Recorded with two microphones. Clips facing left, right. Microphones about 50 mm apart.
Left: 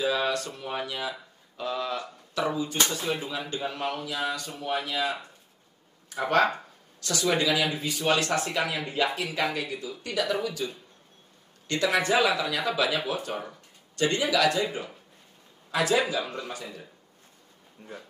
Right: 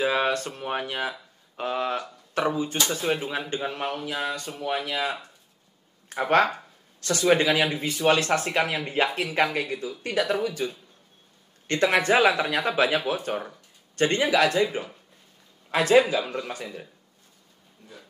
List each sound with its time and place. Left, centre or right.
0.0 s speech: right
17.8 s speech: left